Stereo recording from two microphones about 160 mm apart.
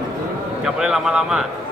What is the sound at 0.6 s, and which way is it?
Speech, 5° right (ahead or behind).